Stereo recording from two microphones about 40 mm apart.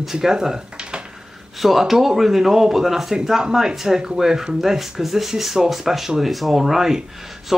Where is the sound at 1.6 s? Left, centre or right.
Centre.